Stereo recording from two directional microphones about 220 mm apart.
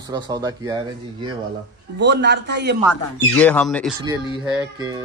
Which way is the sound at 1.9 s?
50° right (ahead or behind).